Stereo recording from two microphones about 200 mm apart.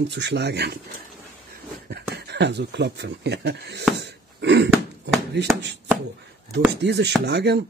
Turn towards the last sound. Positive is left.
turn(degrees=-60)  # may be behind; listen again after turning